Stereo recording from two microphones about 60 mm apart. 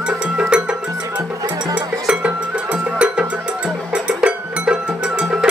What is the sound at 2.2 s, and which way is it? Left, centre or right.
Music, centre.